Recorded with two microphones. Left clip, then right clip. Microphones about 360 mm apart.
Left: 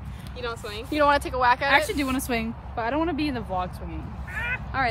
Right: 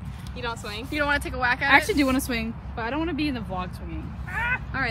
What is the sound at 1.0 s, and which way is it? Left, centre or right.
Speech, centre.